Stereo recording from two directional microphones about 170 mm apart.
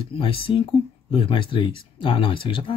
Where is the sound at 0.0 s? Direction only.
30° left (ahead or behind).